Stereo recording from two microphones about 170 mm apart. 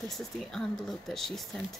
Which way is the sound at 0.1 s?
Centre (ahead or behind).